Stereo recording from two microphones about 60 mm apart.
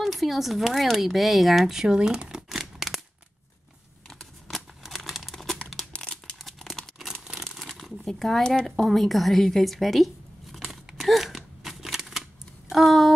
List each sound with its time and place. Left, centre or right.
0.0 s speech: centre
4.1 s a sound: centre
4.8 s crumpling: centre
5.9 s crumpling: centre
6.3 s a sound: centre
7.4 s crumpling: centre
8.7 s zipper: centre